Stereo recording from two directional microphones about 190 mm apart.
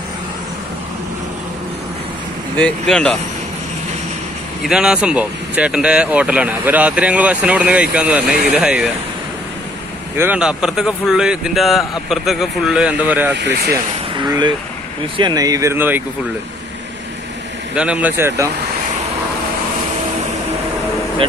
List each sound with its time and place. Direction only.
2.5 s speech: 5° left (ahead or behind)
4.6 s speech: 5° right (ahead or behind)
10.1 s speech: 10° right (ahead or behind)
14.2 s speech: 20° right (ahead or behind)
17.7 s speech: 5° right (ahead or behind)